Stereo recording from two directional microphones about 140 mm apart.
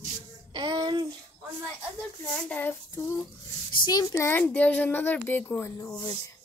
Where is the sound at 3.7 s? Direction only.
30° left (ahead or behind); by 5.7 s 15° left (ahead or behind).